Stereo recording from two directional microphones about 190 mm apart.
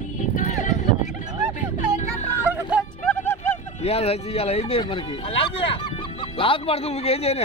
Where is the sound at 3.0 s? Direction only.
10° left (ahead or behind).